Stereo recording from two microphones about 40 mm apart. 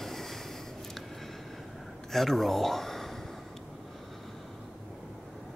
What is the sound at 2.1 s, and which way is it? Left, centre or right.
Speech, centre.